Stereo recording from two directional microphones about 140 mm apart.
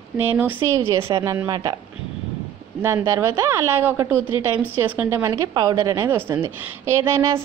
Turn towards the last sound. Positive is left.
turn(degrees=-20)  # may be behind; listen again after turning